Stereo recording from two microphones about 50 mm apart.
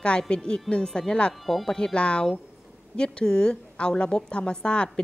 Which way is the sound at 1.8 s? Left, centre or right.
Centre.